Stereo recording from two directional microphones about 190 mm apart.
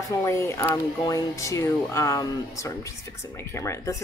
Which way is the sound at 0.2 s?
15° left (ahead or behind).